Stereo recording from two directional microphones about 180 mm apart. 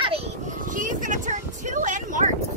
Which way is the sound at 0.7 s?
45° right (ahead or behind).